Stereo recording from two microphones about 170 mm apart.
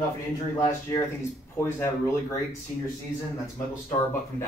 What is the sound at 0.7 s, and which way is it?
Speech, 15° left (ahead or behind).